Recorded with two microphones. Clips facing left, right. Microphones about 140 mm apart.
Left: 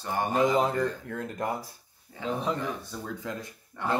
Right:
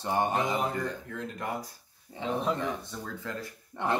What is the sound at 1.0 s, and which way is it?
Speech, 45° left (ahead or behind).